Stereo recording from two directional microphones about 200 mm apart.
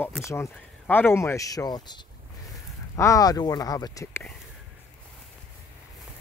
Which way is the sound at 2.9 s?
15° left (ahead or behind).